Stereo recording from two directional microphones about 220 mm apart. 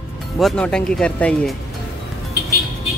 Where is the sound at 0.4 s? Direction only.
Centre (ahead or behind).